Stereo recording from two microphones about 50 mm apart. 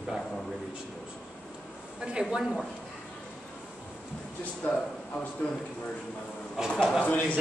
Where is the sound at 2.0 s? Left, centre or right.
Centre.